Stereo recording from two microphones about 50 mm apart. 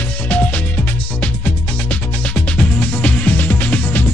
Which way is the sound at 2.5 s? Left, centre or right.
Left.